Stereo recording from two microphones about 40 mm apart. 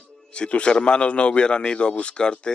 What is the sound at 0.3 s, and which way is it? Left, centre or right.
Speech, left.